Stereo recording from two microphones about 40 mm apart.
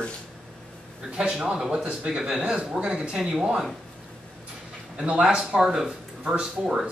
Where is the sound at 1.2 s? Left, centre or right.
Centre.